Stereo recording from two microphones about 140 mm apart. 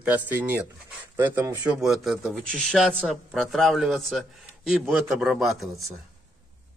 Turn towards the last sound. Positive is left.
turn(degrees=0)  # may be behind; listen again after turning